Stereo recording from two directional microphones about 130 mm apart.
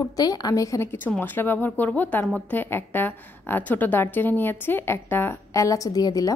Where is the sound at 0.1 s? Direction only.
30° left (ahead or behind).